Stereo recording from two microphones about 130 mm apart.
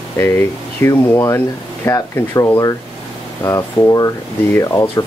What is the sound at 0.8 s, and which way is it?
Speech, 25° left (ahead or behind).